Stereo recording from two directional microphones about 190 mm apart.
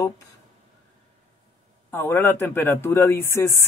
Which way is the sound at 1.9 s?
10° left (ahead or behind).